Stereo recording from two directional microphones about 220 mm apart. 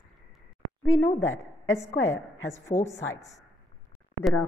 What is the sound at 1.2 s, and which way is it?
A woman's voice, 60° left (ahead or behind).